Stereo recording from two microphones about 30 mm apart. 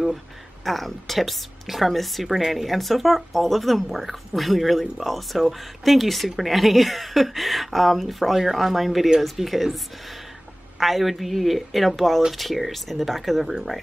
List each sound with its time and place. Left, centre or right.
0.7 s speech: centre
2.2 s speech: centre
8.7 s speech: centre
10.8 s speech: centre